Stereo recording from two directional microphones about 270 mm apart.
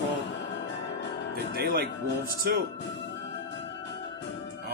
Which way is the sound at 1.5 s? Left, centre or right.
Right.